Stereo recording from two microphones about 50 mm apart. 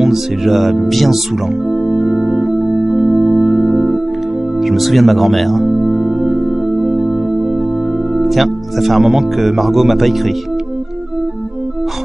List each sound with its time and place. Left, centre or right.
0.0 s music: centre
0.7 s speech: centre
2.1 s organ: right
2.4 s organ: centre
4.6 s speech: centre
8.1 s speech: centre